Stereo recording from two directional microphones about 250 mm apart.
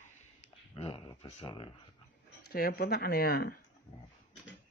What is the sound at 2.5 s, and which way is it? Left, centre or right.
Speech, left.